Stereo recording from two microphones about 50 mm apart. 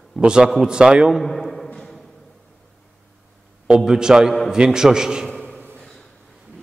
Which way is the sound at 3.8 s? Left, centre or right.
Centre.